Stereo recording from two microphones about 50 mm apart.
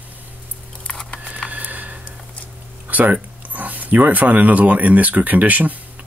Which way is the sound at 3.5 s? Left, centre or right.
Right.